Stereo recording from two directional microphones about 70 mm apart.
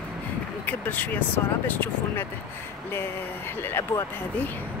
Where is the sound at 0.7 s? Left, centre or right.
Left.